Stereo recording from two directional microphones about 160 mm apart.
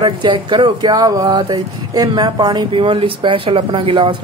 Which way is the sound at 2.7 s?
40° right (ahead or behind).